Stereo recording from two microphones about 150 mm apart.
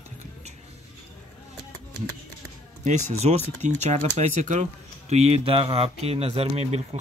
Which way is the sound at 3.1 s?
45° right (ahead or behind).